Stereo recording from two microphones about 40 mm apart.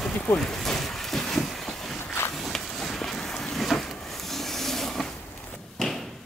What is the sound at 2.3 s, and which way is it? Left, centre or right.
Vehicle, centre.